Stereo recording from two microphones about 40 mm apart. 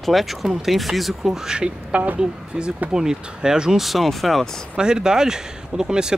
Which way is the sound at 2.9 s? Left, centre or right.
Centre.